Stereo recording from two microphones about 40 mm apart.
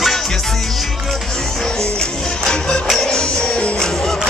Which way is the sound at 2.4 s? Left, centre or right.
Left.